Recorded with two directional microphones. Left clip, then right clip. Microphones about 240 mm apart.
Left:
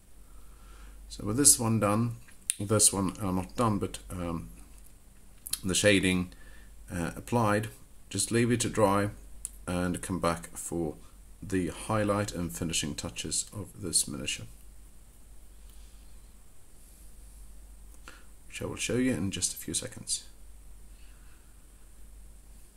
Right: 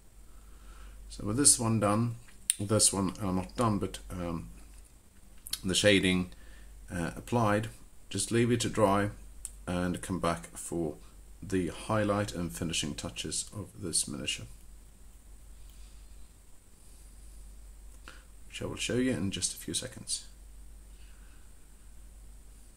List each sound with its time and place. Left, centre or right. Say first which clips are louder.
1.0 s speech: left 2 dB; centre
5.5 s speech: even; centre
18.0 s speech: left 1 dB; centre